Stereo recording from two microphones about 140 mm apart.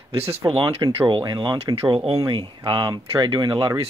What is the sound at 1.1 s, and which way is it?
Speech, 30° right (ahead or behind).